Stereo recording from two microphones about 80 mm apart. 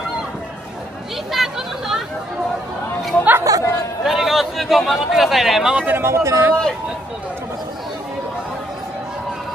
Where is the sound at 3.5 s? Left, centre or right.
Right.